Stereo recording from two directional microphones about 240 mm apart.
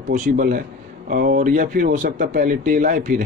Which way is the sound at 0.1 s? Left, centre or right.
Right.